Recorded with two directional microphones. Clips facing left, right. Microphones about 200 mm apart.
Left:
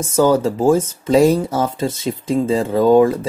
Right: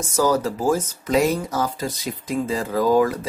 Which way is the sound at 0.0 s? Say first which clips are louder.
Left 6 dB; 25° left (ahead or behind).